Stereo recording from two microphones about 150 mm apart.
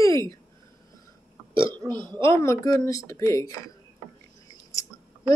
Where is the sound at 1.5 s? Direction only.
35° right (ahead or behind).